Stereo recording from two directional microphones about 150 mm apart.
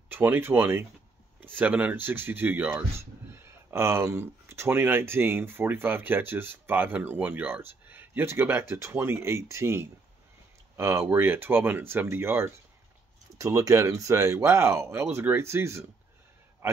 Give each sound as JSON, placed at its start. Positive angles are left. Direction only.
{"t": 0.1, "sound": "a man's voice", "side_deg": -15}